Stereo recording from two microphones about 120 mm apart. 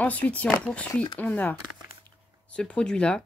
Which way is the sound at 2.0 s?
10° left (ahead or behind).